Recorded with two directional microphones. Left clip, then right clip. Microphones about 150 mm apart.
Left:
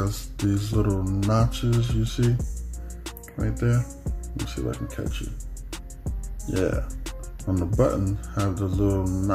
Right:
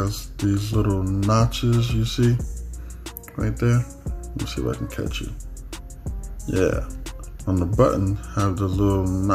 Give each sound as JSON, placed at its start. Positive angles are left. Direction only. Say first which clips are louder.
{"t": 0.0, "sound": "music", "louder": "right 2 dB", "side_deg": 0}
{"t": 1.8, "sound": "speech", "louder": "right 4 dB", "side_deg": -15}
{"t": 3.0, "sound": "music", "louder": "right 3 dB", "side_deg": 0}
{"t": 3.4, "sound": "speech", "louder": "right 3 dB", "side_deg": -15}
{"t": 3.8, "sound": "music", "louder": "right 1 dB", "side_deg": 0}
{"t": 4.8, "sound": "speech", "louder": "right 4 dB", "side_deg": -15}
{"t": 5.2, "sound": "music", "louder": "right 3 dB", "side_deg": 0}
{"t": 8.5, "sound": "speech", "louder": "right 2 dB", "side_deg": -15}
{"t": 9.0, "sound": "music", "louder": "right 3 dB", "side_deg": 0}